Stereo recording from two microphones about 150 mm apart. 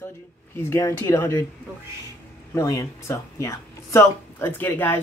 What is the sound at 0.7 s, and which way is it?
Speech, 20° left (ahead or behind).